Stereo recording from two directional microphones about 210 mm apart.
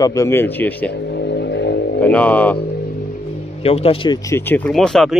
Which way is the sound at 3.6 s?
30° left (ahead or behind).